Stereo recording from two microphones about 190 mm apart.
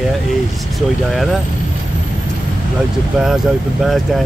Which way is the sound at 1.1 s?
Centre (ahead or behind).